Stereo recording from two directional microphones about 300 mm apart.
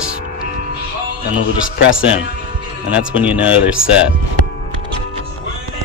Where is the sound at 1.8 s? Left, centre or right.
Left.